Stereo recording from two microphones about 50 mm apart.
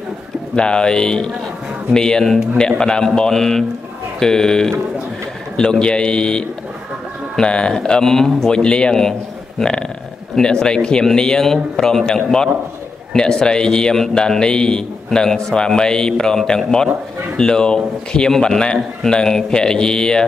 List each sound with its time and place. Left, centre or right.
0.6 s a man's voice: centre